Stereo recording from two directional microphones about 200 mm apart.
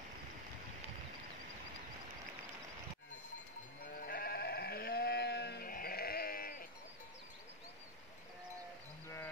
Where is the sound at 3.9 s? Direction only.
45° left (ahead or behind).